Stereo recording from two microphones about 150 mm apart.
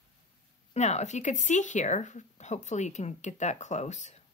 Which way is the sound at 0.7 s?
50° left (ahead or behind).